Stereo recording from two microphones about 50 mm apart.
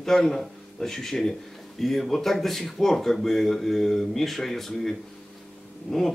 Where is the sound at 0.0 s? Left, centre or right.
Centre.